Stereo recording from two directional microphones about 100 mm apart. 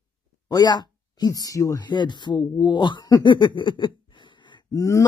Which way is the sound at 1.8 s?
50° left (ahead or behind).